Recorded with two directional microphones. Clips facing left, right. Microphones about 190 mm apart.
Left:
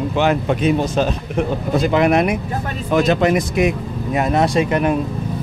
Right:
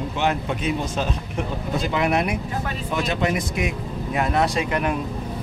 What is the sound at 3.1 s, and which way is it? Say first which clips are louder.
Speech: left 7 dB; 80° left.